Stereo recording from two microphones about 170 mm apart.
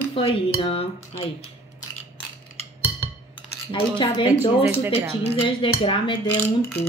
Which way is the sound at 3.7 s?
30° left (ahead or behind).